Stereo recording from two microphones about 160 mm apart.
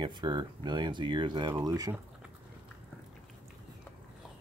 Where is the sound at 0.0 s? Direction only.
30° right (ahead or behind).